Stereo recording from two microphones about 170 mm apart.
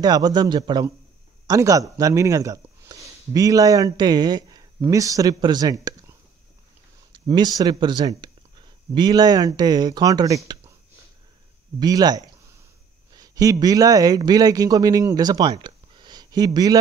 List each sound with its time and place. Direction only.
0.0 s a man's voice: 25° right (ahead or behind)
11.8 s a man's voice: 25° right (ahead or behind)